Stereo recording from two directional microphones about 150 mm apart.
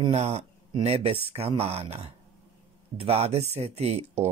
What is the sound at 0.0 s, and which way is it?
Speech, 45° right (ahead or behind).